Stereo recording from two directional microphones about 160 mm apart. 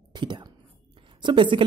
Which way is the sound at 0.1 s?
30° right (ahead or behind).